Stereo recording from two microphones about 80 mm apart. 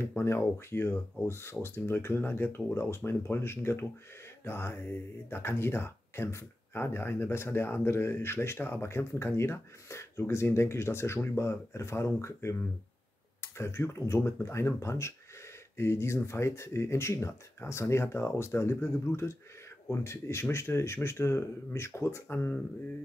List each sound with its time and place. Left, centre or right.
0.0 s speech: left